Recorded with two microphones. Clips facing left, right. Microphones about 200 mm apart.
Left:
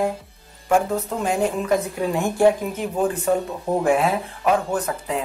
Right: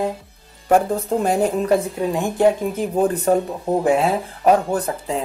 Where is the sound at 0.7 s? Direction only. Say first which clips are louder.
Right 3 dB; 35° right (ahead or behind).